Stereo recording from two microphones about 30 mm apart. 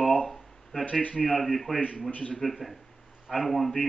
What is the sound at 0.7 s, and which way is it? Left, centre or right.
Speech, right.